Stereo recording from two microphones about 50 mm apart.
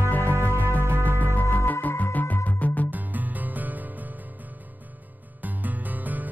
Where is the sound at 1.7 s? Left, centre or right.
Left.